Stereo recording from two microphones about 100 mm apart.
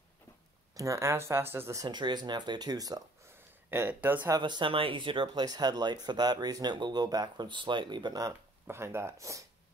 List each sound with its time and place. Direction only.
0.7 s speech: 30° right (ahead or behind)
1.9 s speech: 45° right (ahead or behind)
3.7 s speech: 25° right (ahead or behind)
4.4 s speech: 50° right (ahead or behind)
8.6 s speech: 25° right (ahead or behind)